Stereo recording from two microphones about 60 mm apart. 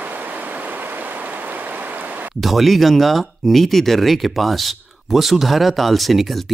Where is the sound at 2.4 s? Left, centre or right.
Centre.